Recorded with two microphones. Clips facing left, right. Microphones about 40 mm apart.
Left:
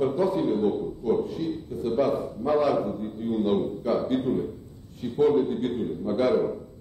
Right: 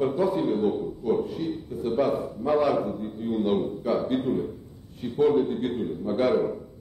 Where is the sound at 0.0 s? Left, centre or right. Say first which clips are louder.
Even; centre.